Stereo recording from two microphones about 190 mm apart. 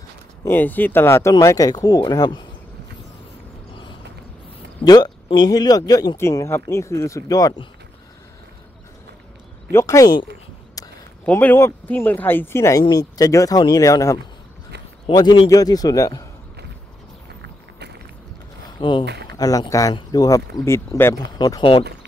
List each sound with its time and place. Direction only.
0.5 s speech: 10° left (ahead or behind)
4.8 s speech: 20° left (ahead or behind)
9.7 s speech: 15° left (ahead or behind)
11.2 s speech: 10° left (ahead or behind)
17.4 s a sound: 60° right (ahead or behind)
18.8 s speech: 25° left (ahead or behind)
19.0 s speech: 60° right (ahead or behind)
19.3 s speech: 20° left (ahead or behind)